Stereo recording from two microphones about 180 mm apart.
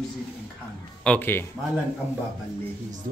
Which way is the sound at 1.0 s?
10° left (ahead or behind).